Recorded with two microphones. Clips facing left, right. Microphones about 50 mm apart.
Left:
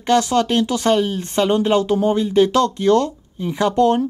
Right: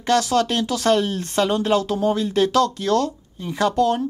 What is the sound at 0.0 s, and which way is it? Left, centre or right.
Speech, centre.